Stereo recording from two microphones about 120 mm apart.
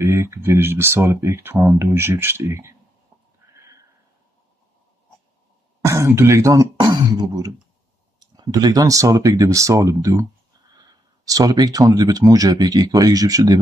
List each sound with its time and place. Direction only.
0.0 s speech: 25° right (ahead or behind)
5.9 s speech: 25° right (ahead or behind)